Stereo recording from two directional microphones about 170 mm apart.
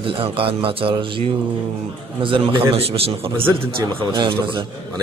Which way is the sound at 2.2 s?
30° right (ahead or behind).